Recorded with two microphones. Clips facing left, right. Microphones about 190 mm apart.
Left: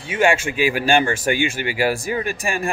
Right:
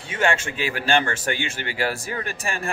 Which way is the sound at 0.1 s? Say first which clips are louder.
Left 5 dB; 10° left (ahead or behind).